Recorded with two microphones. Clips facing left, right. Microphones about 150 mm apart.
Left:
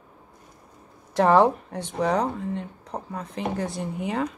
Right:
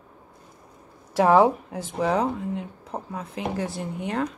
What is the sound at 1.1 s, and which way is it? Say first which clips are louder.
Speech: even; 5° right (ahead or behind).